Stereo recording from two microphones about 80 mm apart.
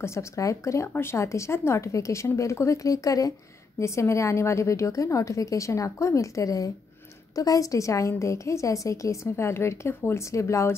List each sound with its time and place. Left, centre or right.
0.0 s a woman's voice: left
0.8 s a woman's voice: left
3.8 s a woman's voice: left